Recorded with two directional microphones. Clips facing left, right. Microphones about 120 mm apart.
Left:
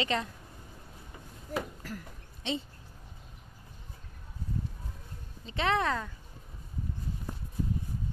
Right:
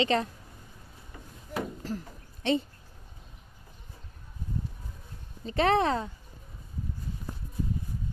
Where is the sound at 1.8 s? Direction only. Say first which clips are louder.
Right 6 dB; 30° right (ahead or behind).